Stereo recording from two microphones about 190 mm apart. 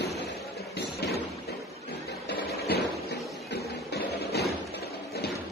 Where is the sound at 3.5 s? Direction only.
60° left (ahead or behind).